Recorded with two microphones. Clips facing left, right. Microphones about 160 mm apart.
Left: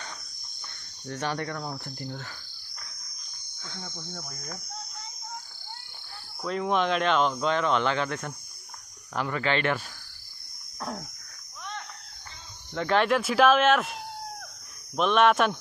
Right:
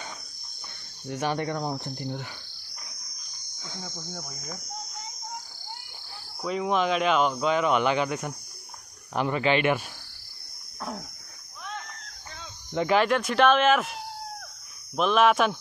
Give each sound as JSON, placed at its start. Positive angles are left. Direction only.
{"t": 1.0, "sound": "speech", "side_deg": -10}
{"t": 6.4, "sound": "speech", "side_deg": -5}
{"t": 10.8, "sound": "a sound", "side_deg": -5}
{"t": 12.7, "sound": "speech", "side_deg": -10}
{"t": 15.0, "sound": "speech", "side_deg": 0}